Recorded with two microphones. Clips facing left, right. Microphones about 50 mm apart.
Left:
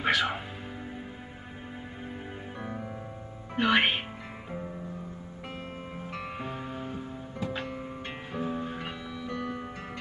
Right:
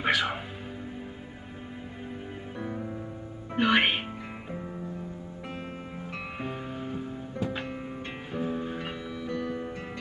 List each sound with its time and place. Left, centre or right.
0.0 s music: centre
2.6 s music: centre
3.5 s speech: centre
6.4 s music: centre
8.3 s music: centre
9.4 s music: centre